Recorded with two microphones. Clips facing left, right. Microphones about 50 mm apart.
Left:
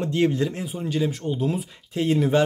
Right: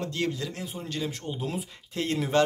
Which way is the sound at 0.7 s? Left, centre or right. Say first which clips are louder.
Left 8 dB; centre.